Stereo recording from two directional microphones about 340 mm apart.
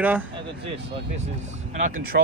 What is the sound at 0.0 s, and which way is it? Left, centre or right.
Speech, centre.